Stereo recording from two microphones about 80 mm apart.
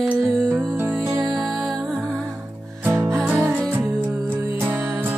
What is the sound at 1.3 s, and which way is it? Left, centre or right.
Music, centre.